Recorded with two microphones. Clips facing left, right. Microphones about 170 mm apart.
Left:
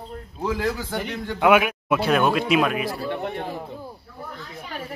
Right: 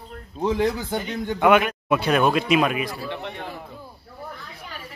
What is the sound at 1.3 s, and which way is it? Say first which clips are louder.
Speech: even; 5° left (ahead or behind).